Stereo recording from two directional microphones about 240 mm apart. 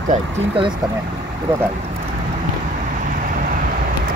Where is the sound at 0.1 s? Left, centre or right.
Right.